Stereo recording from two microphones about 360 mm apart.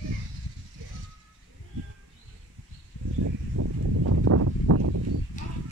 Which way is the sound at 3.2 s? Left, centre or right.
Right.